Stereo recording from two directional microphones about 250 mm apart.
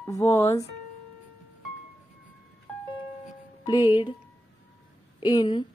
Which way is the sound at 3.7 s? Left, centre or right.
Centre.